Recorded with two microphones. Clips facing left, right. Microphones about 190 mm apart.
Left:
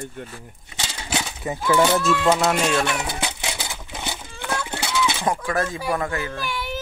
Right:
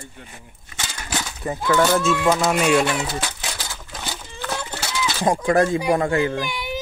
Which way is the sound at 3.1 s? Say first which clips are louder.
Even; 15° left (ahead or behind).